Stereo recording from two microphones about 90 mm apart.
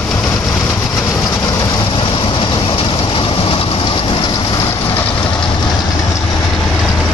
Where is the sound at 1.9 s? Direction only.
70° left (ahead or behind).